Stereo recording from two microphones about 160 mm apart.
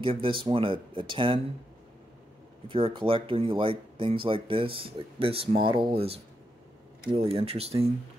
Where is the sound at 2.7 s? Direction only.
35° right (ahead or behind).